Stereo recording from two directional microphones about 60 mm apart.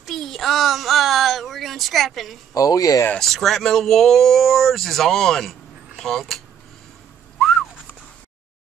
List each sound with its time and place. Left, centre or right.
0.0 s a sound: centre
2.5 s speech: left
3.2 s speech: centre
7.3 s whistling: centre